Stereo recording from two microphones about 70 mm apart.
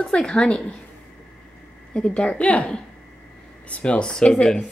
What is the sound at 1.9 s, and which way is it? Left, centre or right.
Speech, centre.